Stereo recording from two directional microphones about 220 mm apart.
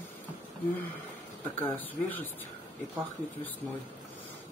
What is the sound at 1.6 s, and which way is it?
Speech, 10° left (ahead or behind).